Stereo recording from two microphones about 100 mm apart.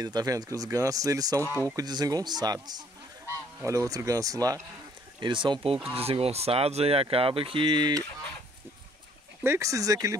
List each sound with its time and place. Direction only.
0.0 s speech: 40° right (ahead or behind)
3.3 s goose: 30° right (ahead or behind)
5.2 s speech: 50° right (ahead or behind)
6.0 s speech: 85° right; by 8.0 s 50° right (ahead or behind)
9.4 s speech: 30° right (ahead or behind)